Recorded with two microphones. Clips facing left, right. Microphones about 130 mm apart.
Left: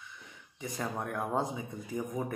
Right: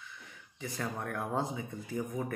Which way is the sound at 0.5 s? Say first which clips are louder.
Left 2 dB; 20° left (ahead or behind).